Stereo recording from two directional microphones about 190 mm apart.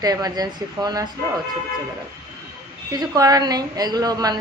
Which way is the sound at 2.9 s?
20° right (ahead or behind).